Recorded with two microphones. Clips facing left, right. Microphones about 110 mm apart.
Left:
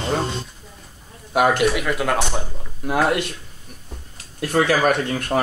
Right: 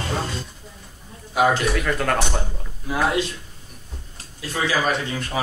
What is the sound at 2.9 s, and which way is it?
Speech, 60° left (ahead or behind).